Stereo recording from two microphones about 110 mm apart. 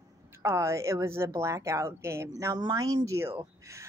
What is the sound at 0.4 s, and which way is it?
A woman's voice, 25° right (ahead or behind).